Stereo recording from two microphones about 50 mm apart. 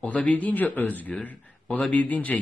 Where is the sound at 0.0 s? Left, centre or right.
Left.